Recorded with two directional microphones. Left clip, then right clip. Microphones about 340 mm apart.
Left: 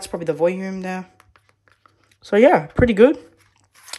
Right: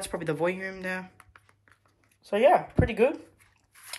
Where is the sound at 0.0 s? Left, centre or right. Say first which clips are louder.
Left 9 dB; centre.